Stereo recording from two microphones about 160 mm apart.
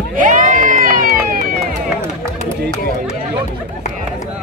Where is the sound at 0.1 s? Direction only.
55° right (ahead or behind).